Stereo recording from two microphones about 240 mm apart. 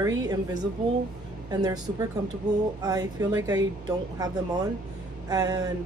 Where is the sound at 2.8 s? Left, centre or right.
Centre.